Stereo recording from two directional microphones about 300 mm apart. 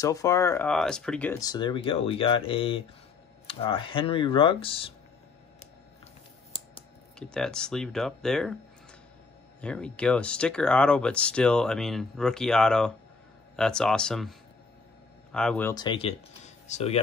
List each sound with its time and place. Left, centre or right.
0.0 s speech: centre
7.2 s speech: centre
9.6 s speech: centre
15.3 s speech: centre; by 17.0 s left